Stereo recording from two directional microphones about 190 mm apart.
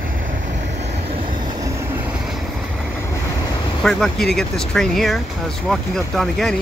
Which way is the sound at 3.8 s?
Centre (ahead or behind).